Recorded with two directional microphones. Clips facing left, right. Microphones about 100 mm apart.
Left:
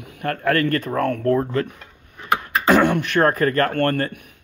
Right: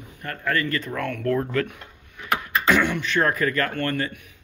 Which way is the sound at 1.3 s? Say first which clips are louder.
Left 3 dB; 25° left (ahead or behind).